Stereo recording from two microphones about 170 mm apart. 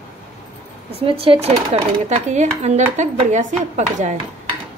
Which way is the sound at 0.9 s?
35° right (ahead or behind).